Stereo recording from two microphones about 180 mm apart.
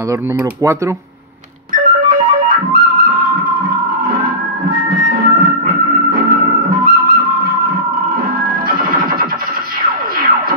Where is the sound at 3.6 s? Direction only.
55° right (ahead or behind).